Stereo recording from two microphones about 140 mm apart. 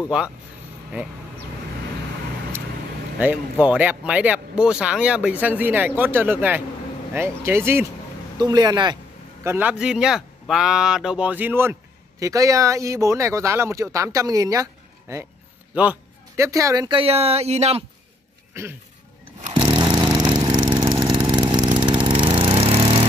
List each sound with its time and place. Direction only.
3.2 s speech: 10° right (ahead or behind)
8.4 s speech: 30° right (ahead or behind)
9.4 s a man's voice: 15° right (ahead or behind)
15.7 s speech: 10° right (ahead or behind)
16.3 s speech: 20° right (ahead or behind)
16.9 s speech: 45° right (ahead or behind)
18.5 s insect: 20° right (ahead or behind)
19.5 s lawn mower: 35° right (ahead or behind)